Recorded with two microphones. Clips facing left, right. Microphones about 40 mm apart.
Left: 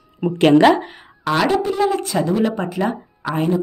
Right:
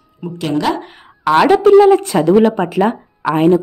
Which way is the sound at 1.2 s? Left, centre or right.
Right.